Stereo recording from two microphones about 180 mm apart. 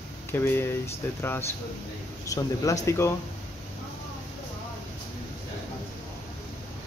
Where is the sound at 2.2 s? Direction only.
20° left (ahead or behind).